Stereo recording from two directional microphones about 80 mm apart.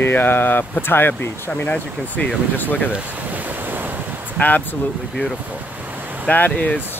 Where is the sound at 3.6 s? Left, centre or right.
Right.